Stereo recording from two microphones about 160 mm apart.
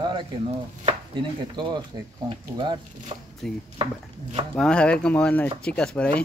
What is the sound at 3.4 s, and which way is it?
Speech, 5° left (ahead or behind).